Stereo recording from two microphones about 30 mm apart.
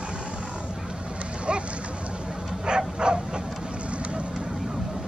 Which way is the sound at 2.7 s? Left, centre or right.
Right.